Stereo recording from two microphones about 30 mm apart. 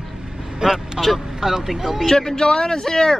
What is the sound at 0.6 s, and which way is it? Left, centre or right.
Speech, centre.